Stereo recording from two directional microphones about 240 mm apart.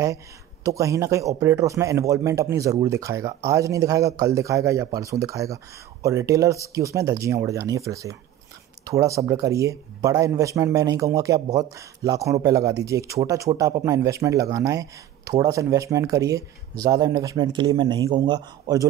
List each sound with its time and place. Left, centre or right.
0.7 s speech: centre